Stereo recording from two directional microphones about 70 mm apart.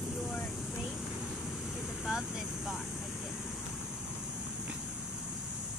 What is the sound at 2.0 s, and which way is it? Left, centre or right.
Vehicle, centre.